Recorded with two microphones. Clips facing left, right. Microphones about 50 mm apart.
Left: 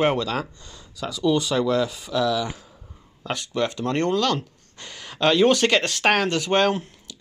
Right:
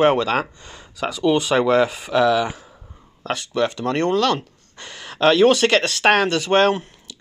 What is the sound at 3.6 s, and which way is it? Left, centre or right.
Speech, right.